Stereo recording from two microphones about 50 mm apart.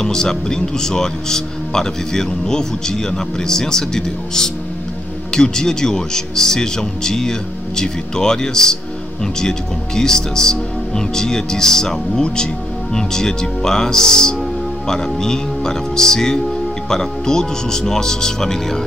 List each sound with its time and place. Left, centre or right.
0.0 s speech: centre